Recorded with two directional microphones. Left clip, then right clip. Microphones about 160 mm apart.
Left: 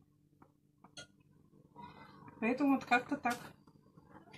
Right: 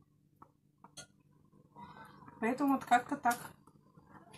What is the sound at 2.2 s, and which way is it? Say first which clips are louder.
A woman's voice: even; centre (ahead or behind).